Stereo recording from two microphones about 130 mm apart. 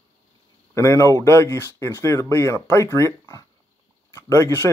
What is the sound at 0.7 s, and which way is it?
Speech, 20° left (ahead or behind).